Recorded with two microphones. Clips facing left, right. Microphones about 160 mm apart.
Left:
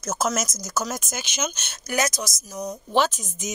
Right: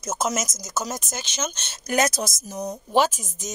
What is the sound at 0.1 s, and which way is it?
Speech, centre (ahead or behind).